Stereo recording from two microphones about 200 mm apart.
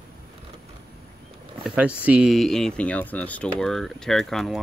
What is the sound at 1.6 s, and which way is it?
Speech, 5° right (ahead or behind).